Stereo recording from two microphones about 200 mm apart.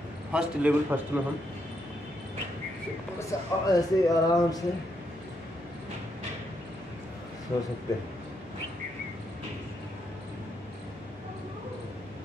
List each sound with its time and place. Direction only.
0.3 s a man's voice: 5° right (ahead or behind)
3.2 s speech: 15° left (ahead or behind)